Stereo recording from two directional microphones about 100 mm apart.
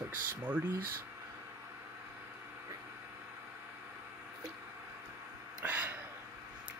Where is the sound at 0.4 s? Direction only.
15° right (ahead or behind).